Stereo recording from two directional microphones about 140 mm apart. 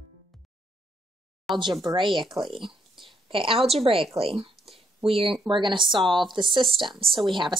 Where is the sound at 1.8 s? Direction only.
35° right (ahead or behind).